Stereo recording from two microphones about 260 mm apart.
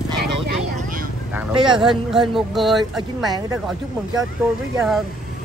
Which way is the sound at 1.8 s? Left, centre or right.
Centre.